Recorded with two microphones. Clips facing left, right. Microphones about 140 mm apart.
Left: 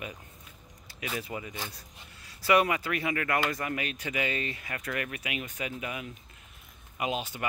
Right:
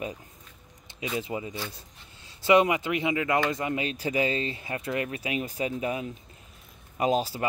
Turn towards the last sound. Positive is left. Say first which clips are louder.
# right 6 dB
turn(degrees=-35)  # may be behind; listen again after turning